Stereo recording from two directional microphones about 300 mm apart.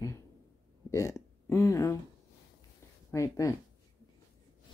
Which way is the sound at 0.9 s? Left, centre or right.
Centre.